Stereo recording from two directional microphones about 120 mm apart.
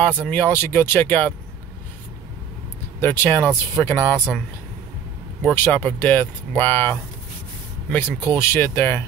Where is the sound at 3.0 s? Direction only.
15° left (ahead or behind).